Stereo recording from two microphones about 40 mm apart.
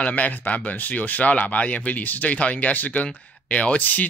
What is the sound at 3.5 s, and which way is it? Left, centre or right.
Speech, left.